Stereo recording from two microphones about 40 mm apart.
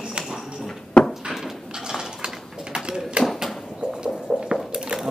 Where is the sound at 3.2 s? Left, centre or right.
Right.